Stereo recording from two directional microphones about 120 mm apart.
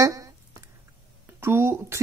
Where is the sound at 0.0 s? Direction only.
30° right (ahead or behind).